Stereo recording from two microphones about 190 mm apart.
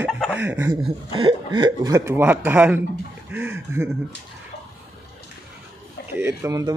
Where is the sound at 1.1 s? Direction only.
25° right (ahead or behind).